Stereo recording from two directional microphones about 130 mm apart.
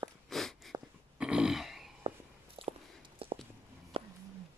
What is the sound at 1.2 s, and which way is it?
Throat clearing, 5° right (ahead or behind).